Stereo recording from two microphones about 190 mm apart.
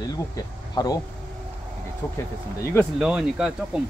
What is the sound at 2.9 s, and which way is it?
Speech, 5° right (ahead or behind).